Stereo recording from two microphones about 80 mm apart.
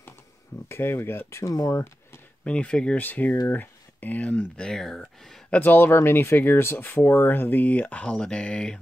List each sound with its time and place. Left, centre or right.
0.7 s speech: left
2.4 s speech: centre
4.6 s speech: centre
5.5 s speech: left